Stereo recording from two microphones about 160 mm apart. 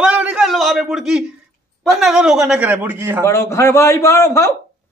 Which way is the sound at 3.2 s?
15° left (ahead or behind).